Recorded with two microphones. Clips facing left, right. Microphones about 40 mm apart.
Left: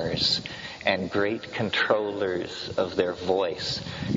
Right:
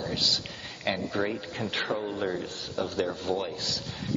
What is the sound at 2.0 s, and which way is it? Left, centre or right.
Speech, centre.